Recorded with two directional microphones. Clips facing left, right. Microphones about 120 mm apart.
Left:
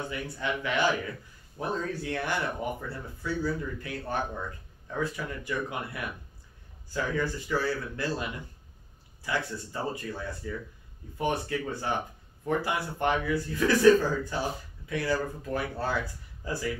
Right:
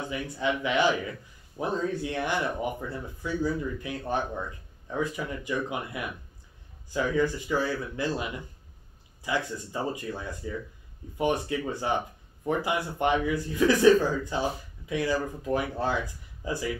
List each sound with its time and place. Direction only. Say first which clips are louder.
0.4 s speech: right 3 dB; 20° right (ahead or behind)